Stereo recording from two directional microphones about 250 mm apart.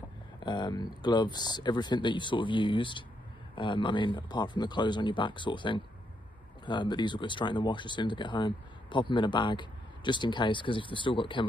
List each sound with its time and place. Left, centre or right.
0.4 s speech: centre